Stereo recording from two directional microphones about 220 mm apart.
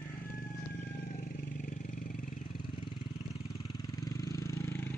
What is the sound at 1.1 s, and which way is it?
Vehicle, 40° left (ahead or behind).